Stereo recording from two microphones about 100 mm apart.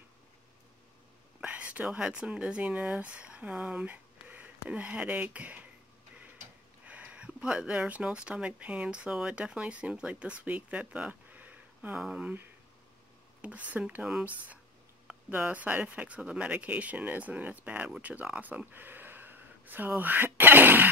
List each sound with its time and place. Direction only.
1.4 s speech: 15° right (ahead or behind)
6.9 s speech: 15° right (ahead or behind)